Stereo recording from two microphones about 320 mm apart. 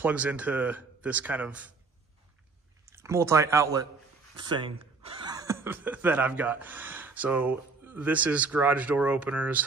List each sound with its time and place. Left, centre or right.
0.0 s speech: centre
2.8 s speech: centre